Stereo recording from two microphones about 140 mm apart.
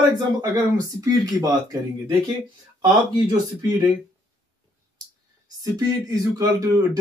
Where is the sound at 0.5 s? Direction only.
25° right (ahead or behind).